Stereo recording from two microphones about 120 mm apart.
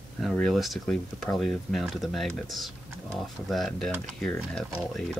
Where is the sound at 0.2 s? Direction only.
5° left (ahead or behind).